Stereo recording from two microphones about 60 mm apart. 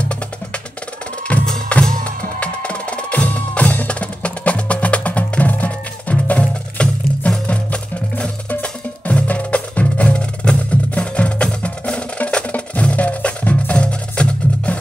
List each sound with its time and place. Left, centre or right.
0.0 s wood block: centre
1.3 s music: left
1.7 s music: centre
2.4 s percussion: left